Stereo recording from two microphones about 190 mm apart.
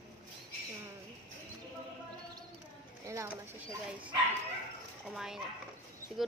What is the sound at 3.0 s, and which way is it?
Speech, 15° right (ahead or behind).